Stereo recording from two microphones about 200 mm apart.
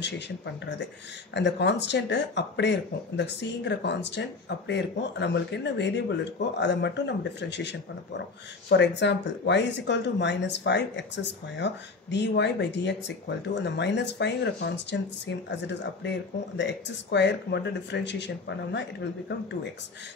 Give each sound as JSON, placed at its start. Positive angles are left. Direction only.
{"t": 1.3, "sound": "speech", "side_deg": 60}